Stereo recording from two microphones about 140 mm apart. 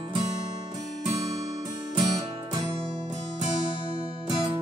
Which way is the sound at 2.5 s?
30° right (ahead or behind).